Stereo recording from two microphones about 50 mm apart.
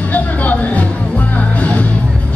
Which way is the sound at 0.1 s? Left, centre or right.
Left.